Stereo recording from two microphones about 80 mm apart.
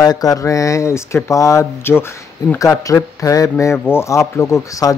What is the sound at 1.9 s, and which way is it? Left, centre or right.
Speech, left.